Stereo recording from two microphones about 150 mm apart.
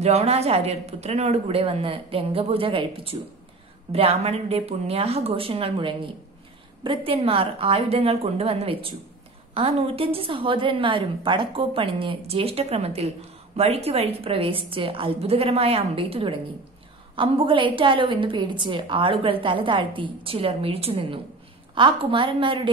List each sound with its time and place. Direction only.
0.0 s a woman's voice: 45° right (ahead or behind)